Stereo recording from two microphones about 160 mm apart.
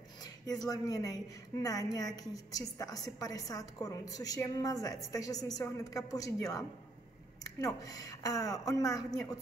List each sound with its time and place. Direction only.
0.2 s a woman's voice: 25° left (ahead or behind)